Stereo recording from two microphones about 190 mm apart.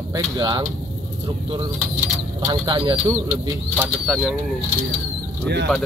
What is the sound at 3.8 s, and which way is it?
Speech, 5° right (ahead or behind).